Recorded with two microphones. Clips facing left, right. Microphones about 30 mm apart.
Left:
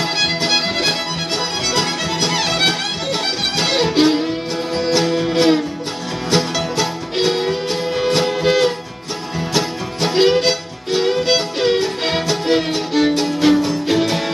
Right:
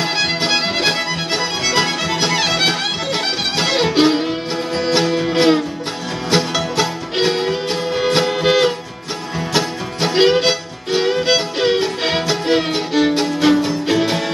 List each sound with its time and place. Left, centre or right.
0.0 s music: centre
10.1 s music: centre